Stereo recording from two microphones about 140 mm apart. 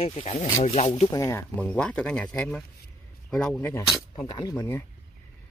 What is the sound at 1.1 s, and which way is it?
Speech, 20° left (ahead or behind).